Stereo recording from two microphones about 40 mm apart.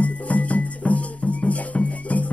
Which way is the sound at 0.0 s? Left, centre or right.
Left.